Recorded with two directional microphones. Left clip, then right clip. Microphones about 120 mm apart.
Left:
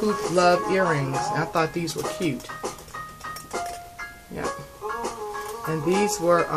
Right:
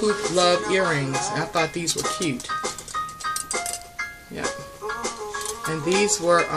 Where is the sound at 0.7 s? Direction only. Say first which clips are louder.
Right 1 dB; 20° right (ahead or behind).